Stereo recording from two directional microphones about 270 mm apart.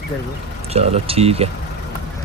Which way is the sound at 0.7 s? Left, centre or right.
Right.